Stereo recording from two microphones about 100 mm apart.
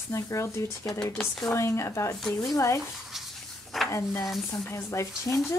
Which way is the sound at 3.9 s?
30° left (ahead or behind).